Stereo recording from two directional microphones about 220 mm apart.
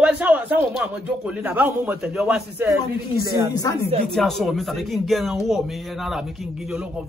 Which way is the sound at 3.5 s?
15° left (ahead or behind).